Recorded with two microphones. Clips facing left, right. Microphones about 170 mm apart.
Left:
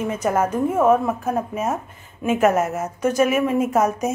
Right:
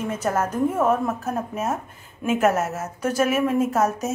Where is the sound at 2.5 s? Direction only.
5° right (ahead or behind).